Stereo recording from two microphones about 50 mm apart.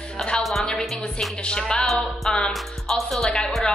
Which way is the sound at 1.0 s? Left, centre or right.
Centre.